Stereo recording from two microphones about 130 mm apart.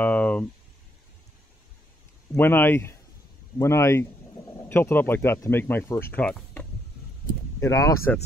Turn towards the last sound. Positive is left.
turn(degrees=25)  # may be behind; listen again after turning